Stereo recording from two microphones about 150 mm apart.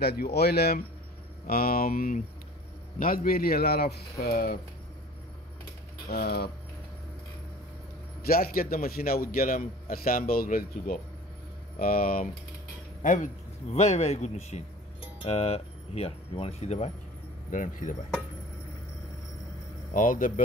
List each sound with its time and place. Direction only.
0.0 s speech: 90° left
1.5 s speech: 80° left
6.0 s speech: 90° left
8.3 s a man's voice: 80° left
13.0 s speech: 60° left (ahead or behind)
17.5 s speech: 60° left (ahead or behind)
19.9 s speech: 60° left (ahead or behind)